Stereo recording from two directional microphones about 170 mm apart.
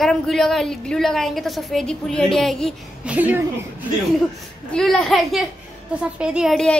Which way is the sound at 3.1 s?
10° right (ahead or behind).